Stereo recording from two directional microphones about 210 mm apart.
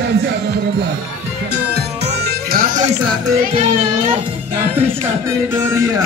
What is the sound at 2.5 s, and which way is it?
Music, 45° right (ahead or behind).